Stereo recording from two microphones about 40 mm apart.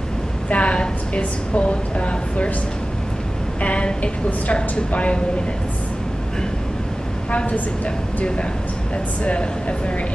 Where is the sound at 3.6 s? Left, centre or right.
Left.